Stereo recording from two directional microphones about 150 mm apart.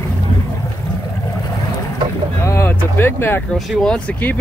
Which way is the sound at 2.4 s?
15° left (ahead or behind).